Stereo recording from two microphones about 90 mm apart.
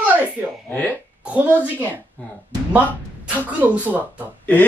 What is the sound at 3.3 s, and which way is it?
Speech, 20° right (ahead or behind).